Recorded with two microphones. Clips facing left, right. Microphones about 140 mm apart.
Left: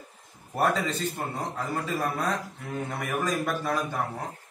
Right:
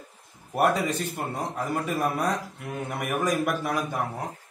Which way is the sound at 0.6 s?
15° right (ahead or behind).